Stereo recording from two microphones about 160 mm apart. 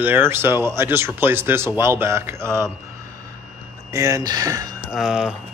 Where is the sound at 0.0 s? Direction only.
15° right (ahead or behind).